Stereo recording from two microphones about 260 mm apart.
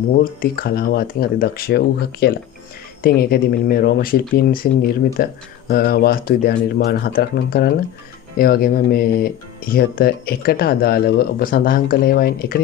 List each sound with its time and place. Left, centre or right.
0.1 s speech: left